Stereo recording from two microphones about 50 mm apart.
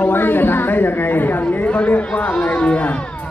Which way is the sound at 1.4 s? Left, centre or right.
Left.